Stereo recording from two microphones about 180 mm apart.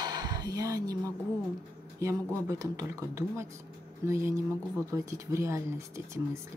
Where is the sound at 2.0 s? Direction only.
15° right (ahead or behind).